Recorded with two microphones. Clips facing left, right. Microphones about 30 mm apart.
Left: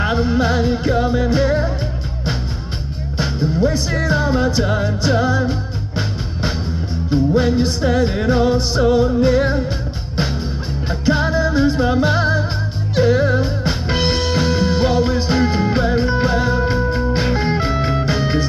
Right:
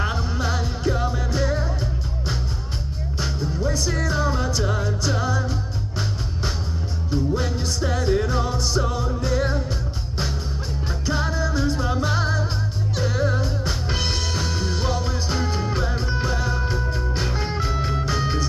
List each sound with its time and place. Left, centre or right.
0.0 s music: left
3.2 s music: left
10.9 s music: left